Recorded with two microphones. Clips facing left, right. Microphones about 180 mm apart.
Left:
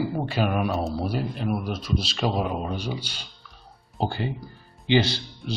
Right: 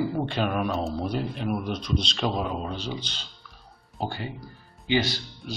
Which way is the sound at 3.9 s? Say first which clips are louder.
Left 4 dB; 25° left (ahead or behind).